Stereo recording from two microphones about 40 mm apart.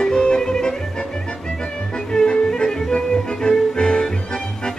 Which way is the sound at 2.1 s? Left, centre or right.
Left.